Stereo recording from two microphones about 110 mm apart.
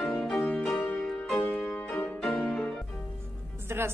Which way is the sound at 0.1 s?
10° left (ahead or behind).